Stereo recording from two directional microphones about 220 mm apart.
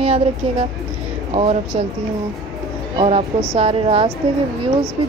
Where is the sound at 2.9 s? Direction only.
25° right (ahead or behind).